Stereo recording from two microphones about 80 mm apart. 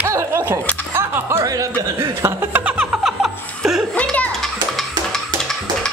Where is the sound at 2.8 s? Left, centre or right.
Centre.